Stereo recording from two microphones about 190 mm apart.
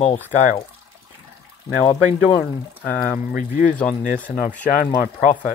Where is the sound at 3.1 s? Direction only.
45° left (ahead or behind).